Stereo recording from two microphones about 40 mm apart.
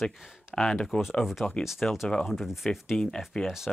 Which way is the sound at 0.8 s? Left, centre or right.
Centre.